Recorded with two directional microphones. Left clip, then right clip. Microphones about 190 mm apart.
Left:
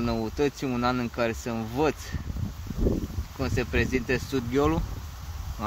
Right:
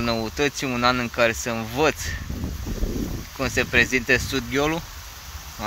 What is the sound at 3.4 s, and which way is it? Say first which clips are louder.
Speech: right 8 dB; 5° left (ahead or behind).